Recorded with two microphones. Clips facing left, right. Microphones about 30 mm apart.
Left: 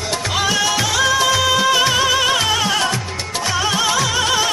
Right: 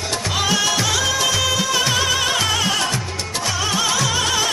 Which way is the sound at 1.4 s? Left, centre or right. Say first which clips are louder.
Left 5 dB; left.